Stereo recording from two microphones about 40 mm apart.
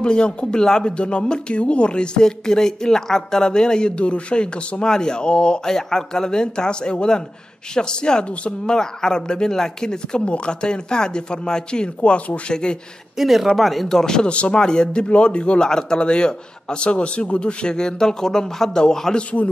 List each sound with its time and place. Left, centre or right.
0.0 s speech: left
5.7 s speech: centre; by 12.5 s left
13.2 s speech: centre
13.8 s speech: centre
19.1 s speech: left